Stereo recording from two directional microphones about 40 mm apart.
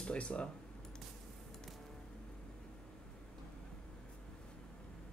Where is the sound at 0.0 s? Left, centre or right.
Left.